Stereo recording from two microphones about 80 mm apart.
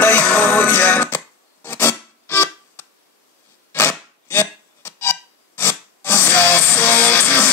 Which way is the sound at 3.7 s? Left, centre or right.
Left.